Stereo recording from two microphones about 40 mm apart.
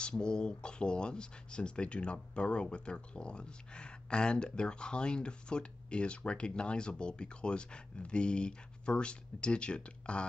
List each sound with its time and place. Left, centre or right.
0.0 s speech: left